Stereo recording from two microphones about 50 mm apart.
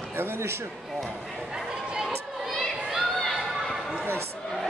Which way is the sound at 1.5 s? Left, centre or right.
Centre.